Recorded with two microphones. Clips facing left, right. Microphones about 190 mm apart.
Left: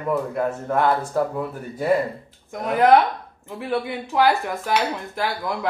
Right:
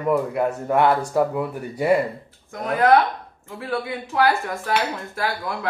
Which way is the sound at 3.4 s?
20° left (ahead or behind).